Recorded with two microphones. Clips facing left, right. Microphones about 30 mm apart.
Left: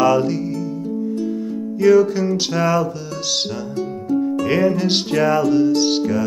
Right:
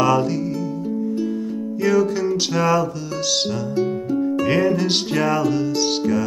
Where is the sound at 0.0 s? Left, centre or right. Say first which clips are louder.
Left 2 dB; centre.